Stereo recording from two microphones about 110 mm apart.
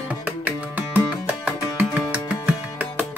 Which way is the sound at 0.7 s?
15° right (ahead or behind).